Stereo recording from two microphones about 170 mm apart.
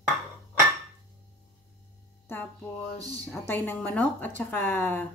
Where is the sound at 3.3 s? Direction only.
10° left (ahead or behind).